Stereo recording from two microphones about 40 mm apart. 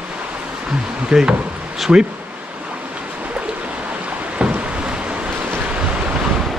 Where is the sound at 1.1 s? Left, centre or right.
Right.